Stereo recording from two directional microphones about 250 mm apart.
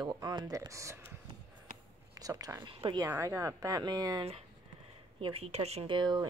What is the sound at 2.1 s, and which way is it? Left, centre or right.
Speech, centre.